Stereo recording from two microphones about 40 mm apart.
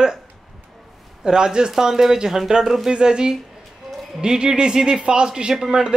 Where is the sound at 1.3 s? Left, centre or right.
Centre.